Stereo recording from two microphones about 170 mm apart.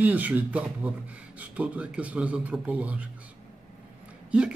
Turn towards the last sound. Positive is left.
turn(degrees=-5)  # may be behind; listen again after turning